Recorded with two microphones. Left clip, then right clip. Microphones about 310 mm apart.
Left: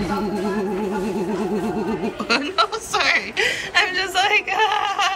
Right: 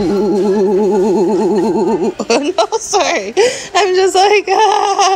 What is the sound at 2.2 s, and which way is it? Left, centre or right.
A woman's voice, centre.